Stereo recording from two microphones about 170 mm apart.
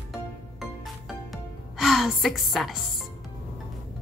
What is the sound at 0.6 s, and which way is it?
Music, centre (ahead or behind).